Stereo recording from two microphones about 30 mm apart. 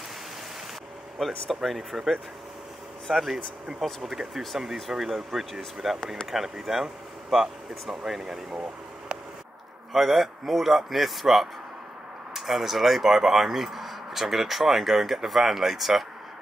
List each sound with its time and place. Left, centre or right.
1.1 s speech: centre
9.1 s a sound: right
9.9 s speech: centre